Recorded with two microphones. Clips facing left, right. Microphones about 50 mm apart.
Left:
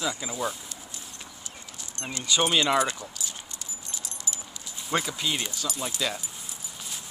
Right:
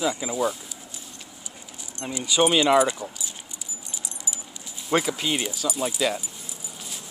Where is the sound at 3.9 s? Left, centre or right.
Centre.